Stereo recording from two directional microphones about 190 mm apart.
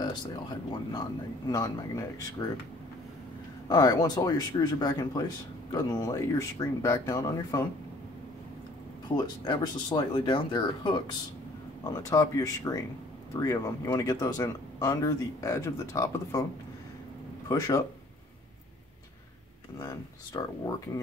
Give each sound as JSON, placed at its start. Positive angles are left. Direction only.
{"t": 0.0, "sound": "speech", "side_deg": 20}
{"t": 3.6, "sound": "speech", "side_deg": 20}
{"t": 9.1, "sound": "speech", "side_deg": 20}
{"t": 17.5, "sound": "speech", "side_deg": 20}
{"t": 19.8, "sound": "speech", "side_deg": 20}